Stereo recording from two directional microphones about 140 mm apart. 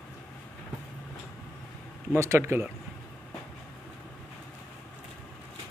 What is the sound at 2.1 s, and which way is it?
Speech, 20° right (ahead or behind).